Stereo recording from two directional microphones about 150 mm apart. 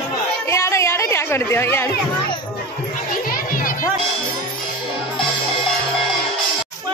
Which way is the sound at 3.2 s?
70° left (ahead or behind).